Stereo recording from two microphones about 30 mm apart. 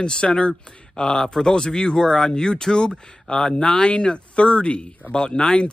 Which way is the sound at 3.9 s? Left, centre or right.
Left.